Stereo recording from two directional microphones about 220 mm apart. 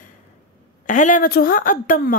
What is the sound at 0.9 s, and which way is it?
A woman's voice, 35° left (ahead or behind).